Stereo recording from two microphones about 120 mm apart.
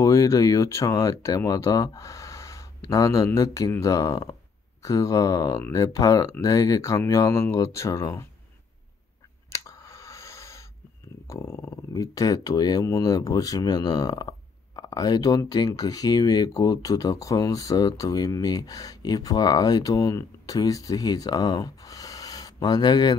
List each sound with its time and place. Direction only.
0.0 s speech: 30° left (ahead or behind)
9.6 s a sound: 25° left (ahead or behind)
11.2 s speech: 25° left (ahead or behind)